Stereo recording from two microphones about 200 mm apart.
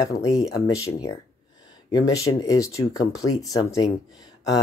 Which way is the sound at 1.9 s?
20° left (ahead or behind).